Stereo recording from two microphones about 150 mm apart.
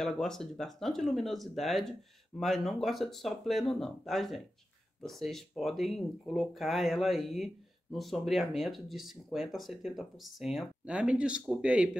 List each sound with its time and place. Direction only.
0.0 s speech: 5° left (ahead or behind)